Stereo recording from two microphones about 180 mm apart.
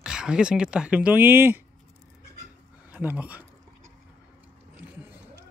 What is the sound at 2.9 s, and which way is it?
Speech, 10° right (ahead or behind).